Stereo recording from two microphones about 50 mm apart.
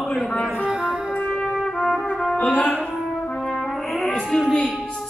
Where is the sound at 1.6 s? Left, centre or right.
Centre.